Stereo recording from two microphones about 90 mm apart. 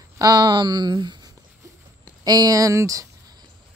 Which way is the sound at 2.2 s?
45° right (ahead or behind).